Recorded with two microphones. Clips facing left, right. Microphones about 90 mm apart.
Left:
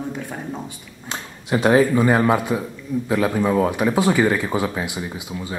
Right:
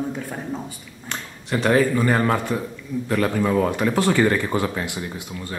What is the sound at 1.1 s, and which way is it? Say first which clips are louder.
Speech: left 3 dB; 15° left (ahead or behind).